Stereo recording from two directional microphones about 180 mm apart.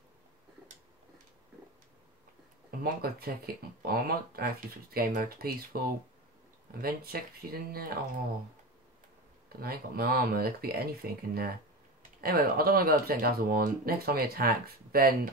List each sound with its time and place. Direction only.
2.8 s speech: 60° right (ahead or behind)
9.5 s speech: 55° right (ahead or behind)